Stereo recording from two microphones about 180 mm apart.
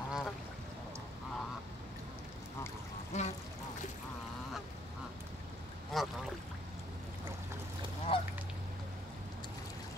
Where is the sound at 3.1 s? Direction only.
40° left (ahead or behind).